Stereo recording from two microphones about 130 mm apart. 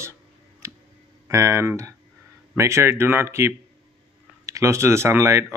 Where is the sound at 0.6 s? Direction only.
20° right (ahead or behind).